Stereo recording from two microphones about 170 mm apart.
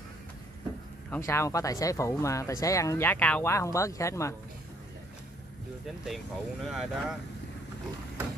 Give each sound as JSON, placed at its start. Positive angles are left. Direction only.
{"t": 1.1, "sound": "speech", "side_deg": 15}
{"t": 6.0, "sound": "speech", "side_deg": 0}